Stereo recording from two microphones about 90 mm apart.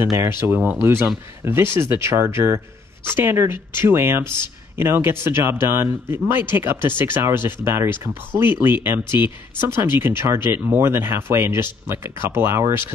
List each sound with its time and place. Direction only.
0.3 s speech: 25° right (ahead or behind)